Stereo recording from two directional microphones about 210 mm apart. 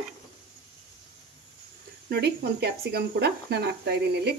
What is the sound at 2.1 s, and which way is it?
Speech, 50° right (ahead or behind).